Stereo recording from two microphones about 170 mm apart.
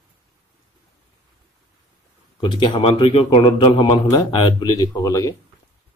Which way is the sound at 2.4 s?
30° left (ahead or behind).